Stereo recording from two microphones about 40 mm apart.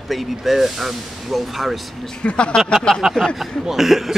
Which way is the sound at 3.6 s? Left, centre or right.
Centre.